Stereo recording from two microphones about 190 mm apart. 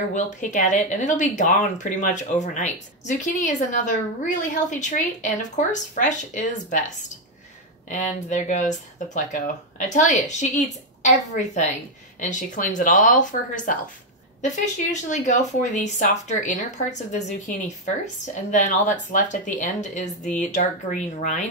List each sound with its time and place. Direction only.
0.1 s speech: 40° left (ahead or behind)